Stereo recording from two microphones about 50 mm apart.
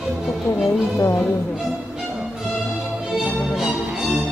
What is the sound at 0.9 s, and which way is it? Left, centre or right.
Speech, left.